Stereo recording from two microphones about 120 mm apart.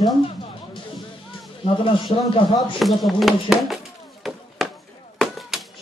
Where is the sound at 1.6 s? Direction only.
50° left (ahead or behind).